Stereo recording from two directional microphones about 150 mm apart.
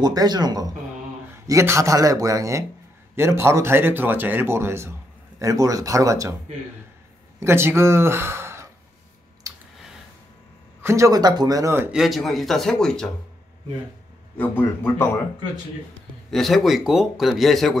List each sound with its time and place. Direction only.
0.0 s a man's voice: 25° right (ahead or behind)
7.3 s speech: 15° right (ahead or behind)
10.8 s a man's voice: 20° right (ahead or behind)
11.9 s a man's voice: centre (ahead or behind)
14.3 s a man's voice: 10° left (ahead or behind)
16.3 s a man's voice: centre (ahead or behind)